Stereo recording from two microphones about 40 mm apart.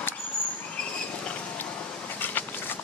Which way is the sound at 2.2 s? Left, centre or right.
Left.